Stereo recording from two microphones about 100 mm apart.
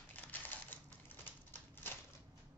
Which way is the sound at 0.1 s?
20° left (ahead or behind).